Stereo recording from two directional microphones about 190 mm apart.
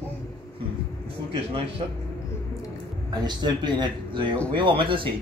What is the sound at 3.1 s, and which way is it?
A man's voice, 25° right (ahead or behind).